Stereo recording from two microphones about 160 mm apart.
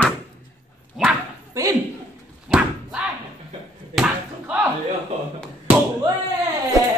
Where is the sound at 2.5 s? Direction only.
5° right (ahead or behind).